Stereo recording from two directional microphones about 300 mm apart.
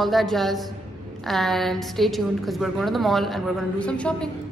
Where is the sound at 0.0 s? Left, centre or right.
Centre.